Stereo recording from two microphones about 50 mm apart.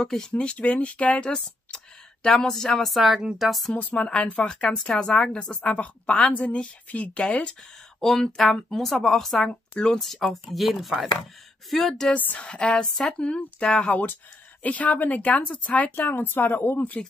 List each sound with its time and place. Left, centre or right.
0.0 s a woman's voice: centre
2.2 s speech: centre
3.7 s a woman's voice: left
8.0 s speech: centre
9.5 s speech: centre
9.9 s speech: centre
12.4 s a woman's voice: left
12.8 s speech: centre
13.2 s a woman's voice: left